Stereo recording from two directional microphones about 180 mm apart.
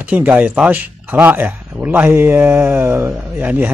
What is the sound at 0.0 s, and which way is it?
Speech, 10° right (ahead or behind).